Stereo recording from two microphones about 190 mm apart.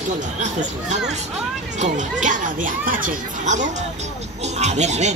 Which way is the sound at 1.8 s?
40° right (ahead or behind).